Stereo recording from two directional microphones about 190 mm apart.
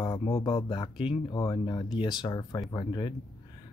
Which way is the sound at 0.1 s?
15° left (ahead or behind).